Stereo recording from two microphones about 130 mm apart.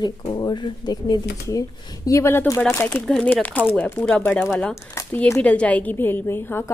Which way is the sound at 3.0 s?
5° left (ahead or behind).